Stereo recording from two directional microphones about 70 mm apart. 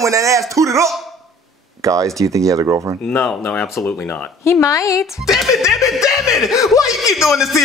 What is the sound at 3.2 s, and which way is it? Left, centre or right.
Speech, centre.